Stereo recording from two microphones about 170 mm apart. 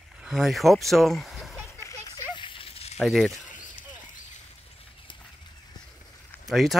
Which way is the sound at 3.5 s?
50° left (ahead or behind).